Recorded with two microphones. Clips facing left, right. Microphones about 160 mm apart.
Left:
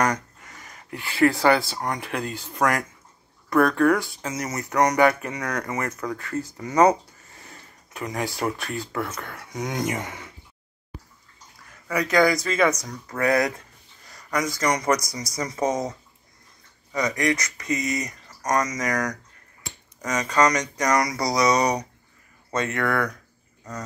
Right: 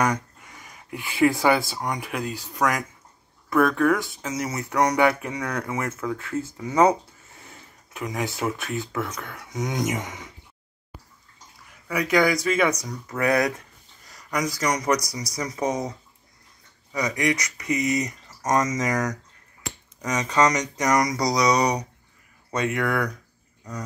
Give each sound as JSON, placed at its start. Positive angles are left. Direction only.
{"t": 0.0, "sound": "speech", "side_deg": -10}
{"t": 11.9, "sound": "speech", "side_deg": -5}
{"t": 14.4, "sound": "speech", "side_deg": 0}
{"t": 15.6, "sound": "speech", "side_deg": -10}
{"t": 16.9, "sound": "speech", "side_deg": -10}